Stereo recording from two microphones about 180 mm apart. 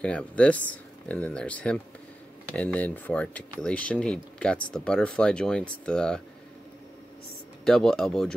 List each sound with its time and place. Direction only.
0.0 s speech: 5° left (ahead or behind)
7.6 s speech: 5° left (ahead or behind)